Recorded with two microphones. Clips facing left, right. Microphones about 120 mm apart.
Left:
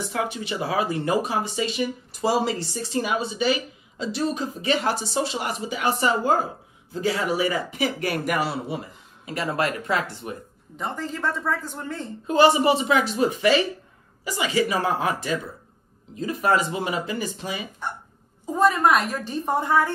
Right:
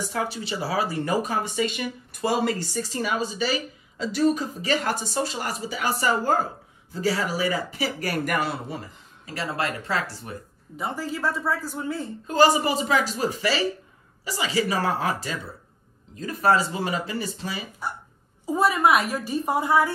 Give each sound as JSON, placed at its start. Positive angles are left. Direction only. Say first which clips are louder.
{"t": 0.0, "sound": "speech", "louder": "left 1 dB", "side_deg": -35}
{"t": 3.2, "sound": "speech", "louder": "left 2 dB", "side_deg": -40}
{"t": 9.2, "sound": "speech", "louder": "left 3 dB", "side_deg": -30}
{"t": 10.8, "sound": "a woman's voice", "louder": "even", "side_deg": -5}
{"t": 12.4, "sound": "speech", "louder": "left 2 dB", "side_deg": -35}
{"t": 18.4, "sound": "a woman's voice", "louder": "left 1 dB", "side_deg": -10}